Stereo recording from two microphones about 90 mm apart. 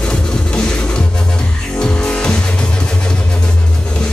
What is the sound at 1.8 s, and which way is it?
Music, 10° left (ahead or behind).